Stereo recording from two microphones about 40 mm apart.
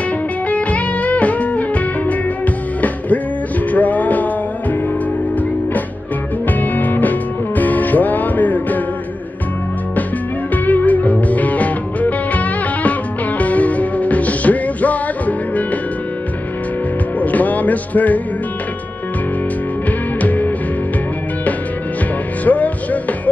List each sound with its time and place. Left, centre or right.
0.5 s music: left
6.6 s music: left
10.5 s music: left
17.2 s music: left
20.2 s music: left
22.4 s music: left